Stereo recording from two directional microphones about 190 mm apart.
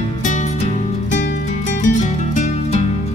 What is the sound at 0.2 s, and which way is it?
Music, 40° left (ahead or behind).